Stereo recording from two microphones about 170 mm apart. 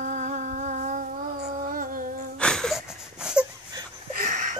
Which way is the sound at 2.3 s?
5° left (ahead or behind).